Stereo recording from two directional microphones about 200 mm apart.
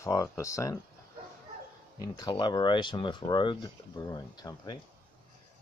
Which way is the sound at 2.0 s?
20° left (ahead or behind).